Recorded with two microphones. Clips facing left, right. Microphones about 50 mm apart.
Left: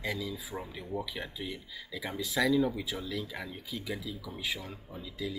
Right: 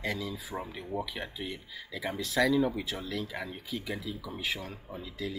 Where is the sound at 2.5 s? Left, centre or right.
Right.